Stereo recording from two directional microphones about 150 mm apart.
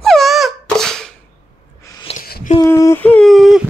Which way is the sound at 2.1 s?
40° left (ahead or behind).